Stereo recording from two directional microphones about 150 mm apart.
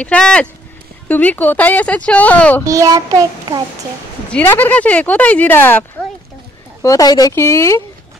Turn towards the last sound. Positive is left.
turn(degrees=20)  # may be behind; listen again after turning